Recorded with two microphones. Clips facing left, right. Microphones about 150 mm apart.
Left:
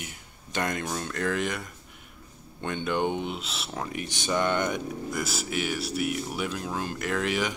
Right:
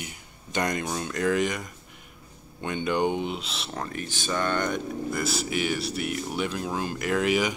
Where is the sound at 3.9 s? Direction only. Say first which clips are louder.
Left 2 dB; 20° left (ahead or behind).